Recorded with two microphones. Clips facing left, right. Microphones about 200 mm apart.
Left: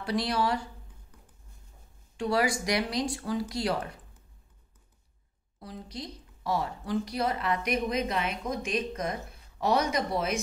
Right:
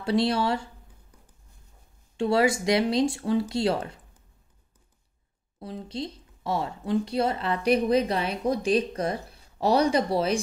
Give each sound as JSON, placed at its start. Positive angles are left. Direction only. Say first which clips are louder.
{"t": 0.0, "sound": "speech", "louder": "right 5 dB", "side_deg": -25}
{"t": 2.1, "sound": "speech", "louder": "right 5 dB", "side_deg": -25}
{"t": 5.6, "sound": "a woman's voice", "louder": "right 7 dB", "side_deg": -25}